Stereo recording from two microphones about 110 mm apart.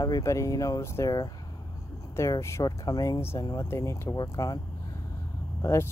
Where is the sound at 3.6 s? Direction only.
25° left (ahead or behind).